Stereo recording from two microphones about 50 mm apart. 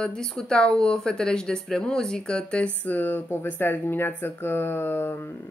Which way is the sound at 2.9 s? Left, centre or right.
Left.